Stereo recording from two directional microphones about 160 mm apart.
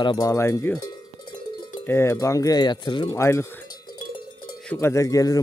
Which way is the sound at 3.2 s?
15° left (ahead or behind).